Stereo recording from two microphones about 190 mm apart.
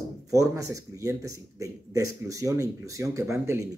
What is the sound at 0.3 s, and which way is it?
A man's voice, 15° right (ahead or behind).